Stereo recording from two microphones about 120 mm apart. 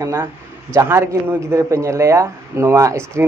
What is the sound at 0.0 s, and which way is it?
Speech, 20° right (ahead or behind).